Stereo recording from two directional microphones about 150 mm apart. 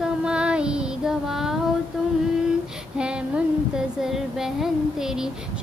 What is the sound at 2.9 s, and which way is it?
Child singing, 5° right (ahead or behind).